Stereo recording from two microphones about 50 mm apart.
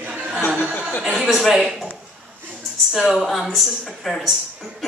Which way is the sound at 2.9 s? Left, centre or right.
Centre.